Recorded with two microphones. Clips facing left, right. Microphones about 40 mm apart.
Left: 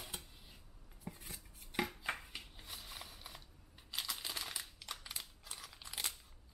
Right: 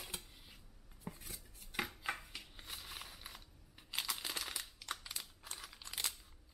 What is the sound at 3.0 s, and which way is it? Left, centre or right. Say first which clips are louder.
Mechanisms: right 1 dB; right.